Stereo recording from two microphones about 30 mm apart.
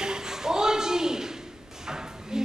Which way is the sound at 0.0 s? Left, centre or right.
Right.